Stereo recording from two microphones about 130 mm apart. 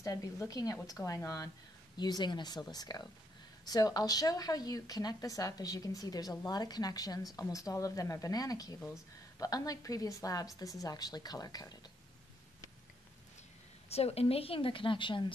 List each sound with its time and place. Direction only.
0.0 s speech: 25° left (ahead or behind)
13.8 s a woman's voice: 50° left (ahead or behind)